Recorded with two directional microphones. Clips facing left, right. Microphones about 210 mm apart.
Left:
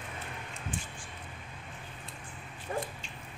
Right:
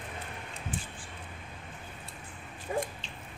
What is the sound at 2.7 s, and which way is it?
Dog, 15° right (ahead or behind).